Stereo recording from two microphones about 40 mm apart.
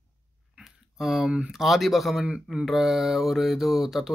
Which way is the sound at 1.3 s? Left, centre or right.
Right.